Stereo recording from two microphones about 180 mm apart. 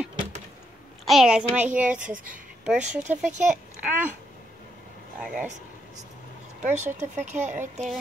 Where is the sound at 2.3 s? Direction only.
5° right (ahead or behind).